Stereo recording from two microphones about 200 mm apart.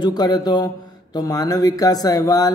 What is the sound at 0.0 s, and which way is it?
Mantra, 20° left (ahead or behind).